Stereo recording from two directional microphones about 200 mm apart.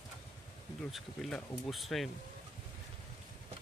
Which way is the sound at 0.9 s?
Centre (ahead or behind).